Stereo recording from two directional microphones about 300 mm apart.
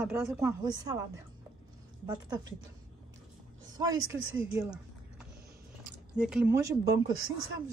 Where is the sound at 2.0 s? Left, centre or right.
Centre.